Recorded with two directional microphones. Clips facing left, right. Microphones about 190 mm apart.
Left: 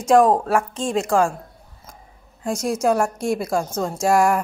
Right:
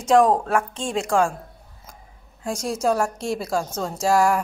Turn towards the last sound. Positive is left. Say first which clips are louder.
# left 2 dB
turn(degrees=10)  # may be behind; listen again after turning